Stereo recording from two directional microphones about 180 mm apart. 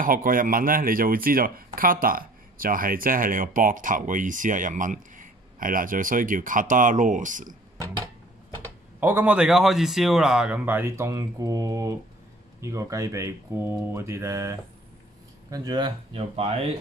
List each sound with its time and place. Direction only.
0.0 s speech: 50° right (ahead or behind)
9.0 s speech: 10° right (ahead or behind); by 16.7 s 35° right (ahead or behind)